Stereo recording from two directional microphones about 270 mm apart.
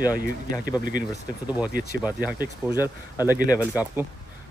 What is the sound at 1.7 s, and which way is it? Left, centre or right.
Speech, right.